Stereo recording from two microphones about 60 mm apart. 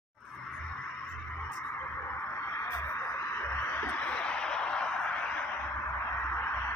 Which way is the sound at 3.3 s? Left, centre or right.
Left.